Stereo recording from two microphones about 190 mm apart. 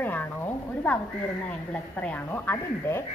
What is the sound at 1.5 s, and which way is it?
A woman's voice, 5° left (ahead or behind).